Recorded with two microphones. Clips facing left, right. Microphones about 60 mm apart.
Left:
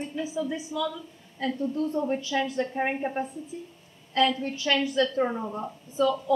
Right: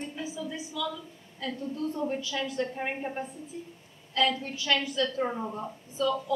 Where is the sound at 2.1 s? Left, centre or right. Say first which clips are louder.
Left 5 dB; centre.